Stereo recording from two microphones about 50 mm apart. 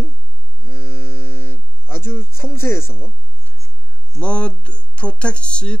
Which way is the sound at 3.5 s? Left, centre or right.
Right.